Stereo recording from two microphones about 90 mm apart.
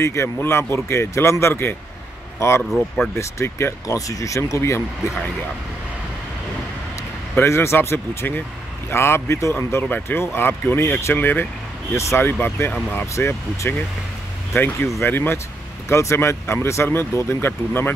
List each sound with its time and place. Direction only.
0.0 s speech: 30° left (ahead or behind)
7.3 s speech: 30° left (ahead or behind)